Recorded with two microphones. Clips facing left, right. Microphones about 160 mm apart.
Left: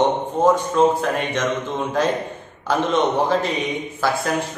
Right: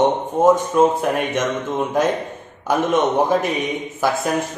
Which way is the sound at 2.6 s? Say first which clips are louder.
Right 1 dB; 10° right (ahead or behind).